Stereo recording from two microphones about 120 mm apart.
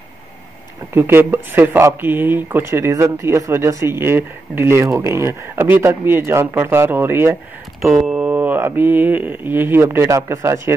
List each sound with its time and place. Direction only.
0.9 s speech: 20° right (ahead or behind)
7.8 s speech: 5° right (ahead or behind); by 10.7 s 25° right (ahead or behind)